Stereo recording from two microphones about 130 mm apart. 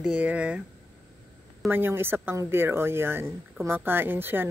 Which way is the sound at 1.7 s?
15° right (ahead or behind).